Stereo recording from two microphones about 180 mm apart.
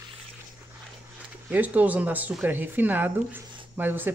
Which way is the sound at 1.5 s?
10° right (ahead or behind).